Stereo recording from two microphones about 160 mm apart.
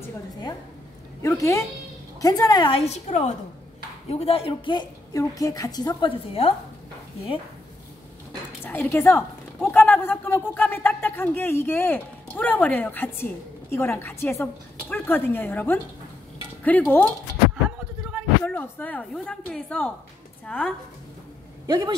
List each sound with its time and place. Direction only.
1.2 s a woman's voice: 20° left (ahead or behind)
8.6 s a woman's voice: 15° left (ahead or behind)
18.4 s a woman's voice: 10° left (ahead or behind)
21.6 s a woman's voice: 25° right (ahead or behind)